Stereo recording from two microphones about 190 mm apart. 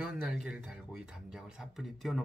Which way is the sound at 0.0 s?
5° right (ahead or behind).